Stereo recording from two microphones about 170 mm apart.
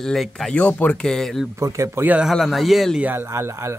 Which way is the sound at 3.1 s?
15° right (ahead or behind).